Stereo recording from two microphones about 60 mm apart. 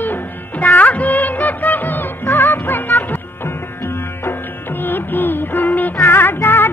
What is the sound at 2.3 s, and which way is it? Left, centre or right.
Music, left.